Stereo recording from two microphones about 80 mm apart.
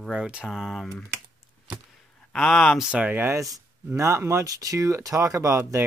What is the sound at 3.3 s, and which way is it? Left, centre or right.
Speech, right.